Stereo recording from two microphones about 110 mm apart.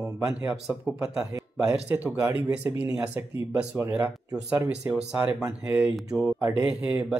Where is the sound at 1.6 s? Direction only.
10° right (ahead or behind).